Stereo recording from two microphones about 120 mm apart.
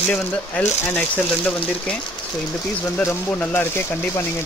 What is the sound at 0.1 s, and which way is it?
Speech, 10° left (ahead or behind).